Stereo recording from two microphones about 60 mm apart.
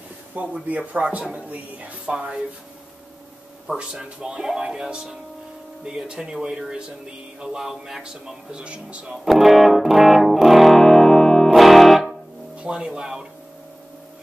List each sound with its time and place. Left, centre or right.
0.3 s speech: right
2.1 s speech: centre
3.7 s speech: centre
9.2 s music: centre
12.5 s speech: centre